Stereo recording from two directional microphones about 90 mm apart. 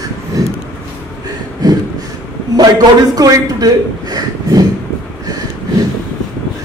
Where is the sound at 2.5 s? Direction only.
45° right (ahead or behind).